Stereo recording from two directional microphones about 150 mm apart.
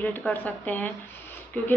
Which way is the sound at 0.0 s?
10° left (ahead or behind).